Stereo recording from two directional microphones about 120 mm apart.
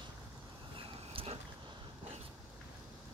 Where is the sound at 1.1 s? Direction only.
55° right (ahead or behind).